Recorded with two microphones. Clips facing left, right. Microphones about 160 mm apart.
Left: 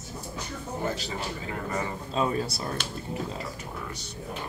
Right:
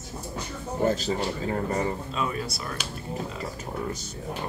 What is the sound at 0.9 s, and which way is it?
Speech, 40° right (ahead or behind).